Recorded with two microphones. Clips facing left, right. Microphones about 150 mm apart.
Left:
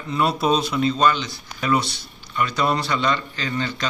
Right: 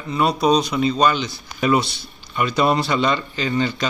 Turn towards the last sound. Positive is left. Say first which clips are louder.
# right 5 dB
turn(degrees=-15)  # may be behind; listen again after turning